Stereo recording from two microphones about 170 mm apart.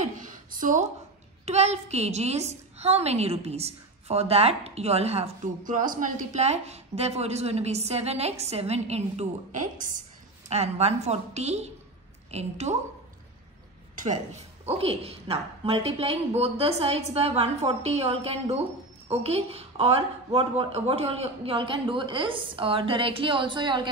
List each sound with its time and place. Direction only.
0.0 s a sound: 50° right (ahead or behind)
1.4 s a woman's voice: 40° right (ahead or behind)
10.5 s a woman's voice: 40° right (ahead or behind)
13.9 s a woman's voice: 45° right (ahead or behind); by 23.9 s 25° right (ahead or behind)